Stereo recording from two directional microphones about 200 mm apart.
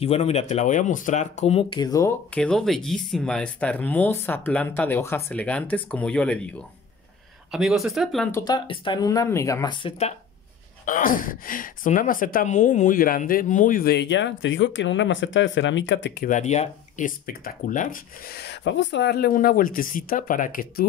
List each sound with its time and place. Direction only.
0.0 s speech: 30° left (ahead or behind); by 2.1 s 15° left (ahead or behind)
2.3 s speech: 5° left (ahead or behind)
7.5 s speech: centre (ahead or behind)
8.3 s speech: 15° left (ahead or behind)
8.5 s speech: 25° left (ahead or behind)
10.9 s speech: 40° left (ahead or behind); by 16.3 s 65° left (ahead or behind)
16.3 s speech: 35° left (ahead or behind)